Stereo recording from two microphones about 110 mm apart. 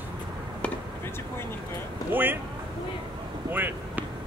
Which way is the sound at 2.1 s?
15° right (ahead or behind).